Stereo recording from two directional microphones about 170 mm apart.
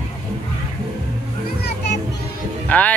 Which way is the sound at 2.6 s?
10° left (ahead or behind).